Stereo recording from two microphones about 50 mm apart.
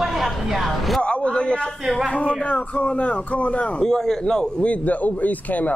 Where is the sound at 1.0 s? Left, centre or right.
Left.